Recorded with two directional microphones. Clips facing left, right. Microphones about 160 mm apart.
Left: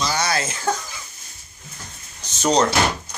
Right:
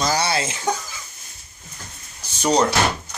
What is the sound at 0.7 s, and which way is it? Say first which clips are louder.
Speech: left 1 dB; 15° right (ahead or behind).